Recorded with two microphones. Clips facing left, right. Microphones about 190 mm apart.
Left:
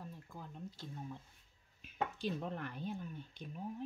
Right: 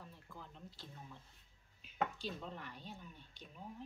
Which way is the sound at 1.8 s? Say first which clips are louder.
Left 1 dB; 50° left (ahead or behind).